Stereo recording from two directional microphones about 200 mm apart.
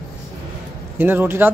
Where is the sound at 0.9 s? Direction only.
10° right (ahead or behind).